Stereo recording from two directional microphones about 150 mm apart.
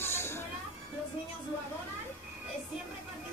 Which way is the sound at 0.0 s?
15° left (ahead or behind).